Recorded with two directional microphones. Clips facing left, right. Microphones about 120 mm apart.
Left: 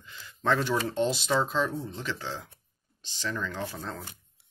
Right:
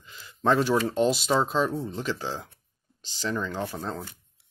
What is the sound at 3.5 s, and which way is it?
Speech, 30° right (ahead or behind).